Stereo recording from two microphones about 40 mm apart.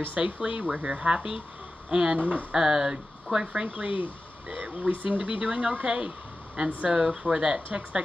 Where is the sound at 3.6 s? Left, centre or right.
Right.